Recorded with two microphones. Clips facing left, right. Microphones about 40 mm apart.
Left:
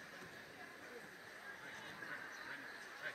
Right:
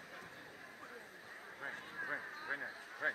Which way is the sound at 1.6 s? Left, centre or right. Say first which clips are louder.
Right 9 dB; right.